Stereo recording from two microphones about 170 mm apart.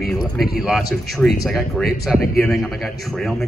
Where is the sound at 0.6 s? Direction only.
Centre (ahead or behind).